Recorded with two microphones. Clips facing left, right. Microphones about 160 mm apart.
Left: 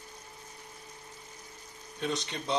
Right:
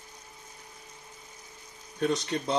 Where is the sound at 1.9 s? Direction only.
50° right (ahead or behind).